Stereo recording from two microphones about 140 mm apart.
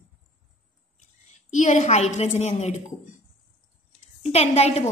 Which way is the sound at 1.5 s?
60° left (ahead or behind).